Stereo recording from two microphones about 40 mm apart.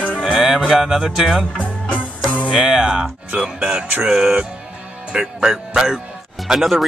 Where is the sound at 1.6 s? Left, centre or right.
Left.